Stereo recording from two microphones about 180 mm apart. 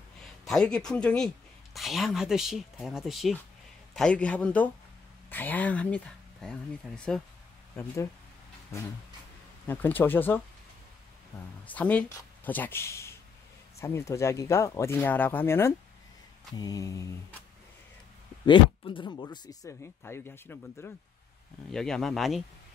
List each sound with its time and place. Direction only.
0.5 s speech: 5° left (ahead or behind)
7.7 s speech: 15° left (ahead or behind)
9.7 s speech: 10° left (ahead or behind)
11.6 s speech: 10° left (ahead or behind)
18.4 s speech: 25° left (ahead or behind); by 22.4 s centre (ahead or behind)